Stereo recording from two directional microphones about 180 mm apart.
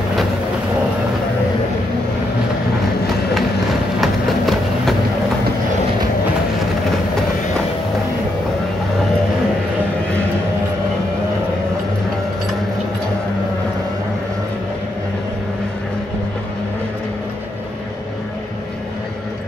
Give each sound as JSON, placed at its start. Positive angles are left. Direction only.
{"t": 4.0, "sound": "run", "side_deg": 0}